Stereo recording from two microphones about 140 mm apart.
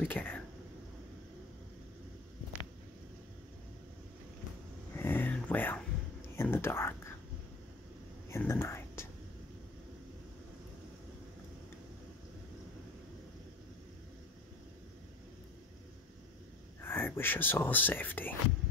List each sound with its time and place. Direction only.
0.0 s speech: 10° left (ahead or behind)
4.9 s a sound: 15° left (ahead or behind)
6.3 s whispering: 15° left (ahead or behind)
8.3 s whispering: 20° left (ahead or behind)
16.8 s speech: 15° left (ahead or behind)